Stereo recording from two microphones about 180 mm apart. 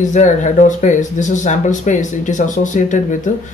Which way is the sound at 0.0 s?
45° left (ahead or behind).